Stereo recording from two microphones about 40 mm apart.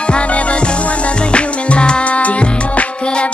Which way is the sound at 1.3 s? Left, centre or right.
Left.